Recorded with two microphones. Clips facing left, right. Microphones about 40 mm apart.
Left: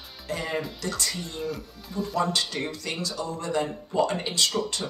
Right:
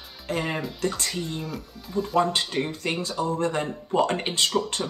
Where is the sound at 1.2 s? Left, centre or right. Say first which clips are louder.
Even; centre.